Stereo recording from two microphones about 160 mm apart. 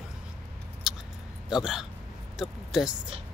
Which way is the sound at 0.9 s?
Centre (ahead or behind).